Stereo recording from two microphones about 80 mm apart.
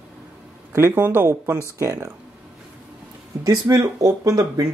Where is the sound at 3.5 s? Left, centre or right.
Right.